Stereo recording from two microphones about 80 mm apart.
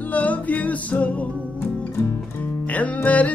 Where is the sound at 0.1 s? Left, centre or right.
Centre.